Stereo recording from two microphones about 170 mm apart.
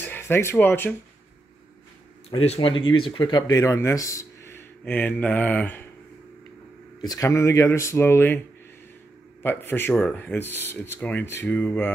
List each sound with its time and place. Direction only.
0.0 s speech: 10° left (ahead or behind)
2.2 s speech: 35° left (ahead or behind); by 5.9 s 10° left (ahead or behind)
7.0 s speech: 20° left (ahead or behind)
9.4 s speech: 10° left (ahead or behind)